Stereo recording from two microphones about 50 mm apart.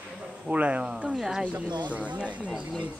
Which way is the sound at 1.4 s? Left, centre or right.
Right.